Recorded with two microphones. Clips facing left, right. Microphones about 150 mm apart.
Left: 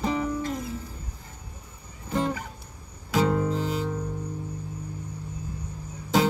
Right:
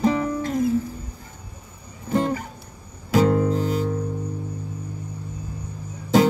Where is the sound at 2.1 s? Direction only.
45° right (ahead or behind).